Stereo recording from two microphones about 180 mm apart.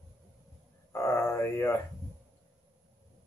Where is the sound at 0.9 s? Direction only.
15° left (ahead or behind).